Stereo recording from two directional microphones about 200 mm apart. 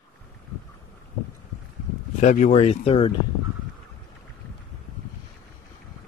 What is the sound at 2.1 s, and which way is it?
Speech, 35° left (ahead or behind).